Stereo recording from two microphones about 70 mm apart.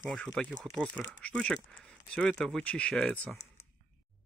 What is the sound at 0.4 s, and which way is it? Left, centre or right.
Speech, centre.